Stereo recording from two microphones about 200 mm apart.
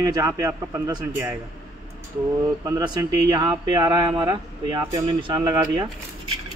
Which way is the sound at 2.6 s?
20° right (ahead or behind).